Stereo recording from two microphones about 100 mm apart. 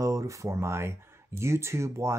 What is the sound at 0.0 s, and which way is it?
Speech, 35° right (ahead or behind).